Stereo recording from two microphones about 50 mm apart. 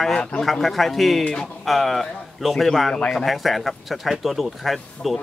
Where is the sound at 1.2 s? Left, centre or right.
Centre.